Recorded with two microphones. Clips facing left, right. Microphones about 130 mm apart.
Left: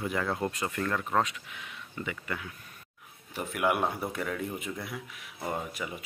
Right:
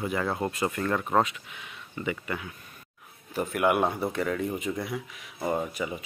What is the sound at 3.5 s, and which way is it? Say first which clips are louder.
Speech: right 3 dB; 5° right (ahead or behind).